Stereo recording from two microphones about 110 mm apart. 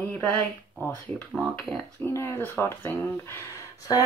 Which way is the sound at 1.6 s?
5° left (ahead or behind).